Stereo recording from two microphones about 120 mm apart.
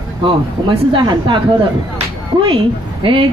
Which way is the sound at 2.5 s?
45° right (ahead or behind).